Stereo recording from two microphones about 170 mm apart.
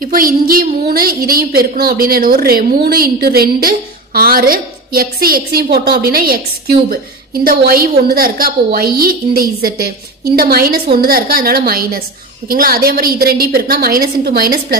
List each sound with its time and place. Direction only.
0.0 s a woman's voice: 55° right (ahead or behind)
7.4 s a woman's voice: 60° right (ahead or behind)